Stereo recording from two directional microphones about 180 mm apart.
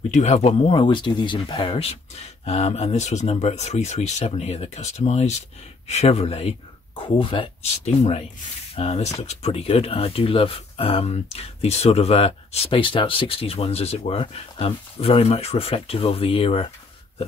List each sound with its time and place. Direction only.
0.1 s speech: 35° left (ahead or behind)